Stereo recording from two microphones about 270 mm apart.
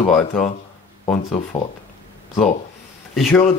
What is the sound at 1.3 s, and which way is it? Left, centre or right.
Speech, left.